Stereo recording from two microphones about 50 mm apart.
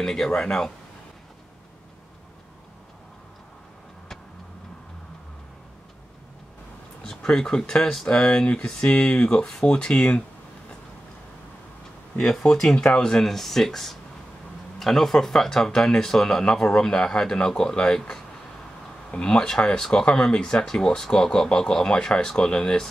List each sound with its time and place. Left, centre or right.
0.0 s speech: centre
7.2 s speech: centre
12.2 s speech: centre